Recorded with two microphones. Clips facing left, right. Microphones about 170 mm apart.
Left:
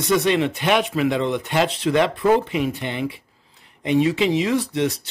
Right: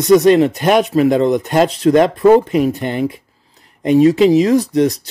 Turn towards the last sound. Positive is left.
turn(degrees=-40)  # may be behind; listen again after turning